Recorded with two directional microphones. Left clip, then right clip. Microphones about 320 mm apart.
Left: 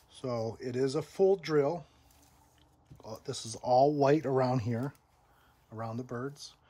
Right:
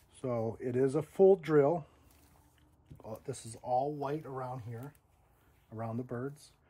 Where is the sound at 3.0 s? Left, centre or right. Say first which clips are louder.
Left 3 dB; centre.